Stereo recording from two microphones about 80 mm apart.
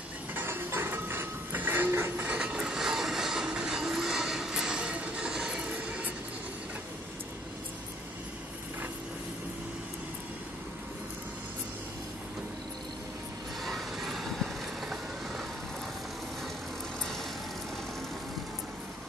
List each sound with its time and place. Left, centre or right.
0.3 s a sound: right
2.2 s train: centre
13.7 s vehicle: centre